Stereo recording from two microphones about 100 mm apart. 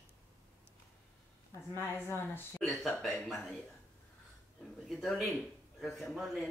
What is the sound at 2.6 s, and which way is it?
Speech, centre (ahead or behind).